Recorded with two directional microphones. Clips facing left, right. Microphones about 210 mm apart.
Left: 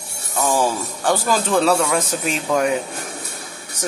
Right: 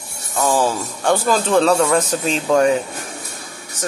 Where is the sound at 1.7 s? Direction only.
10° left (ahead or behind).